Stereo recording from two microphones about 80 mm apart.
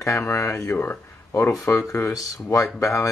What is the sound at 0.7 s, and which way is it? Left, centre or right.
Speech, left.